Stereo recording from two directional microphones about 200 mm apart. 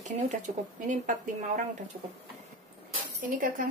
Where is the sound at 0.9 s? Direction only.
40° right (ahead or behind).